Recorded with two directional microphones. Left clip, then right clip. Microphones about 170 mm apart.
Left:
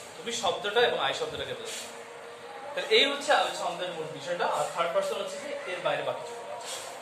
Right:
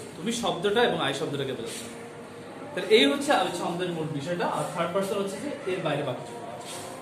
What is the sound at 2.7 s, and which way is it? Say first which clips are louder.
Speech: right 3 dB; 10° left (ahead or behind).